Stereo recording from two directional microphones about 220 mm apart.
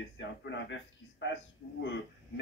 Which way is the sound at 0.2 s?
55° left (ahead or behind).